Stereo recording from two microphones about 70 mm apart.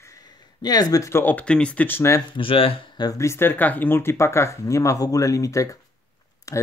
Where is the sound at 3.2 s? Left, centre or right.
Left.